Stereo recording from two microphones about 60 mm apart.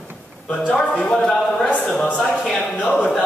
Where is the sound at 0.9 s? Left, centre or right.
Centre.